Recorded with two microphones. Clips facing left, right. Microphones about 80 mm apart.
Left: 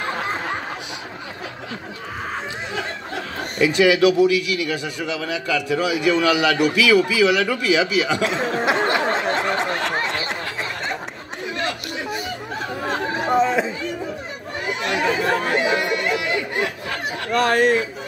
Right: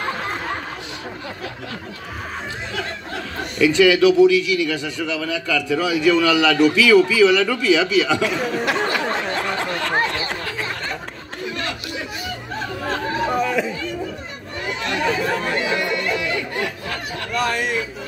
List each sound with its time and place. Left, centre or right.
3.7 s a man's voice: centre
8.9 s a sound: left
12.8 s chatter: left
15.2 s speech: left
15.5 s chatter: left
17.3 s speech: left